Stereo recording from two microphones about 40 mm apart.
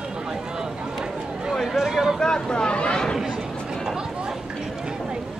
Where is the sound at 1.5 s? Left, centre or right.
Centre.